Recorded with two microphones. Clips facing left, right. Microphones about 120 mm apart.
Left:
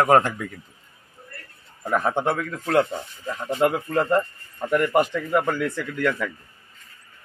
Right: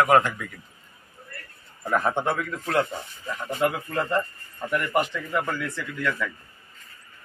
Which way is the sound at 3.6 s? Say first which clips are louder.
Left 4 dB; 30° left (ahead or behind).